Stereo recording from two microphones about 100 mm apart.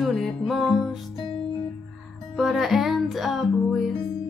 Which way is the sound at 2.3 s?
Centre (ahead or behind).